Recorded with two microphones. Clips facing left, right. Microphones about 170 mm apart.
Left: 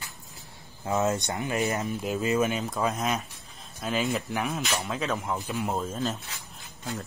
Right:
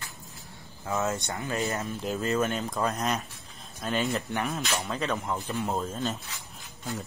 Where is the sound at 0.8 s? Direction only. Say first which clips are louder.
Left 3 dB; 20° left (ahead or behind).